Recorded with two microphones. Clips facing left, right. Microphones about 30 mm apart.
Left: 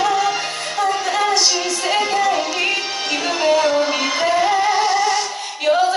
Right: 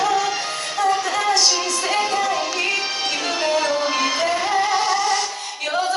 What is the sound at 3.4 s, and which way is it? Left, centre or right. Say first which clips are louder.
Music: left 5 dB; centre.